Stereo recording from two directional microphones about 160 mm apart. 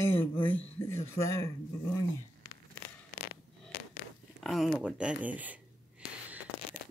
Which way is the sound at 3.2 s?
90° left.